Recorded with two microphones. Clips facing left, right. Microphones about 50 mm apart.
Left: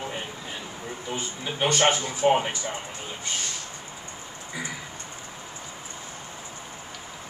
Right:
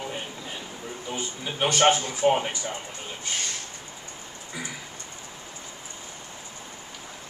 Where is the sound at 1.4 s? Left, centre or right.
Centre.